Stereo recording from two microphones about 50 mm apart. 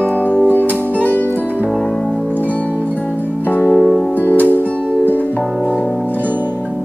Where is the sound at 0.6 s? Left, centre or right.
Right.